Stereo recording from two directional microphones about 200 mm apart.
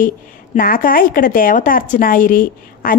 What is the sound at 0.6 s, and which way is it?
A woman's voice, 45° left (ahead or behind).